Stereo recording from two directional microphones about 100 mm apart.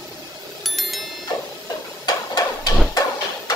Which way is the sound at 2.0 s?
40° left (ahead or behind).